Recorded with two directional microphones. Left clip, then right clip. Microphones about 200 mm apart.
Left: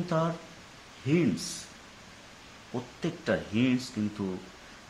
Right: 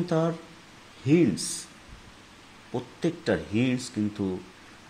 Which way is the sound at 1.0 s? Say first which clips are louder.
Right 5 dB; 15° right (ahead or behind).